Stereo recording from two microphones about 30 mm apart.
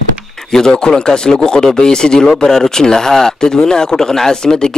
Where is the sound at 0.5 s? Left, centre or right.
Centre.